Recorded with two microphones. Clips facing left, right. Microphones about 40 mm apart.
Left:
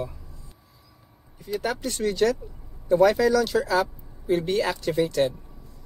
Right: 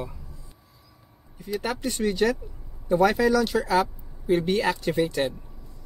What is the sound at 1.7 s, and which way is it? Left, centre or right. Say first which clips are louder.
Speech: even; centre.